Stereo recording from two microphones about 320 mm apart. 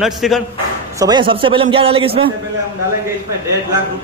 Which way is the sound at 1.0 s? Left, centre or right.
Centre.